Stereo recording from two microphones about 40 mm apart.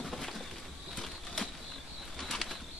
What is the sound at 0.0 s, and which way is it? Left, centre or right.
Pigeon, centre.